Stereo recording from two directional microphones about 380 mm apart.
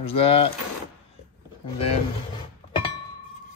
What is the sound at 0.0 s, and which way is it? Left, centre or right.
Speech, centre.